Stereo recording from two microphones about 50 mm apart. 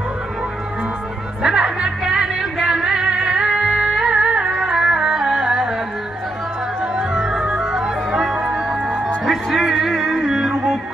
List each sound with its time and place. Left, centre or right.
1.4 s music: centre
6.8 s music: centre